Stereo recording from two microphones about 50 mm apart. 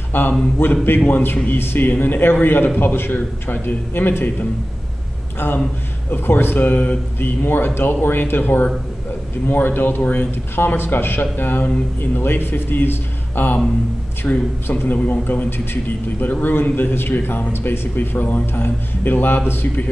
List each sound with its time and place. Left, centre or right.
0.1 s a man's voice: left
6.1 s a man's voice: left
14.2 s a man's voice: left